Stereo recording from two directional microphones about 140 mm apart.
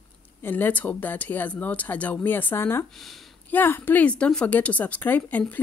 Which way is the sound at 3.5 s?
15° left (ahead or behind).